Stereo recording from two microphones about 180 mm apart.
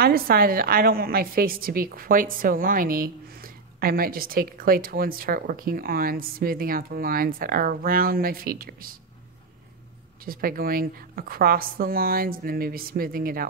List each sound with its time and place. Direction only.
0.0 s a woman's voice: 55° right (ahead or behind)
10.2 s a woman's voice: 55° right (ahead or behind)